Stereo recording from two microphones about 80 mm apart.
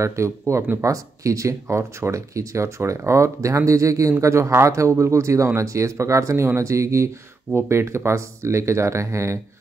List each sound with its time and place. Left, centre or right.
0.0 s speech: right